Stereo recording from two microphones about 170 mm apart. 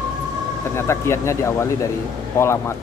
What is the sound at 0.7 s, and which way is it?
A man's voice, 15° left (ahead or behind).